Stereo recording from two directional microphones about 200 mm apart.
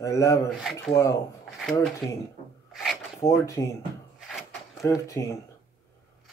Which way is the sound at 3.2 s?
15° left (ahead or behind).